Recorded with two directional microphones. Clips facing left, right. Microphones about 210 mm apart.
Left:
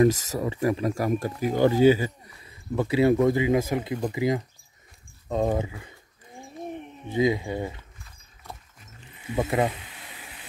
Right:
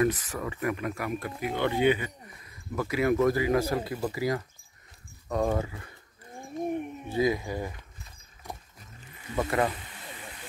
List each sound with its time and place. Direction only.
0.0 s speech: 30° left (ahead or behind)
6.4 s a sound: 10° right (ahead or behind)
7.1 s speech: 20° left (ahead or behind)
8.5 s roaring cats: 15° right (ahead or behind)
9.3 s speech: 20° left (ahead or behind)